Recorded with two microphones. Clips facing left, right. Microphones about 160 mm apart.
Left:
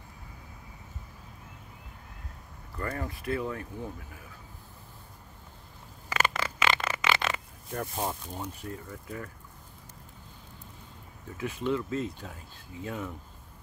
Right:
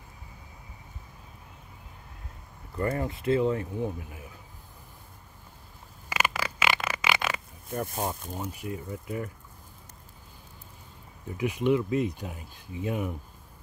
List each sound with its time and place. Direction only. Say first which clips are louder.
2.8 s speech: right 6 dB; 20° right (ahead or behind)
6.0 s a sound: even; 10° right (ahead or behind)
11.3 s speech: right 5 dB; 15° right (ahead or behind)